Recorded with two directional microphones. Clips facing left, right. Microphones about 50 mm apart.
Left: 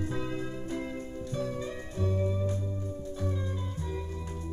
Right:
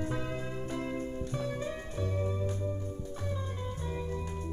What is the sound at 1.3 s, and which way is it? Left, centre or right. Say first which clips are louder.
Music: left 3 dB; right.